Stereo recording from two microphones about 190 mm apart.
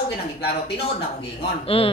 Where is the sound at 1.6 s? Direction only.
30° left (ahead or behind).